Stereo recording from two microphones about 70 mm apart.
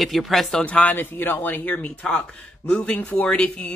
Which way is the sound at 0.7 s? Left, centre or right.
Left.